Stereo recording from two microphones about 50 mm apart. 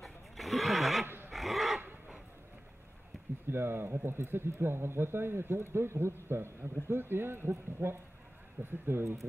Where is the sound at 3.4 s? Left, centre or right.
Right.